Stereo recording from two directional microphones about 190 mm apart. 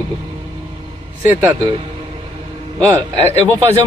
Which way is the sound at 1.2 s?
10° right (ahead or behind).